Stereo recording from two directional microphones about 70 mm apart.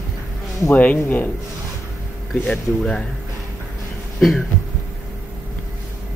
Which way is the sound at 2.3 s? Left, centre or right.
Centre.